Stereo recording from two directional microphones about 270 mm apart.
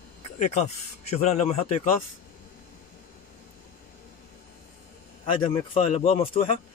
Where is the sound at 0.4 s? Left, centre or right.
Left.